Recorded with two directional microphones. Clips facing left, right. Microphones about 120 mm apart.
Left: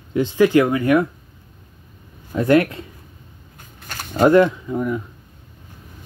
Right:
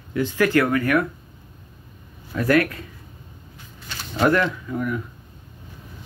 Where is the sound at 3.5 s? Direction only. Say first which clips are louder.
Left 3 dB; 50° left (ahead or behind).